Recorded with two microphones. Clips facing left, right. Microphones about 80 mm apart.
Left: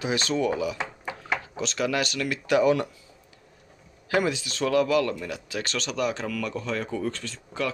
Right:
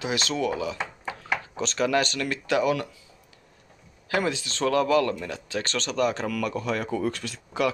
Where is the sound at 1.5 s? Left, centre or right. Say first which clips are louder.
Right 4 dB; centre.